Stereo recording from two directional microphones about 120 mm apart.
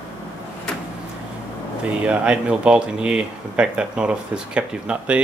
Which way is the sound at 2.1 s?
10° right (ahead or behind).